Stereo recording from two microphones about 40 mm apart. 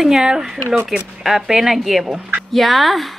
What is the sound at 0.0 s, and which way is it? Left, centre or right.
Speech, centre.